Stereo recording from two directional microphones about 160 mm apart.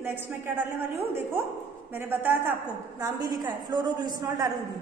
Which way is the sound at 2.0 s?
15° right (ahead or behind).